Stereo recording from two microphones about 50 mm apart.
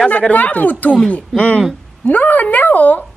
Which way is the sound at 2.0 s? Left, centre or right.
Left.